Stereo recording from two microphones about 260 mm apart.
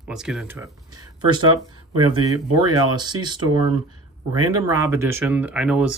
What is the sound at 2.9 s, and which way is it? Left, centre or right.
Speech, centre.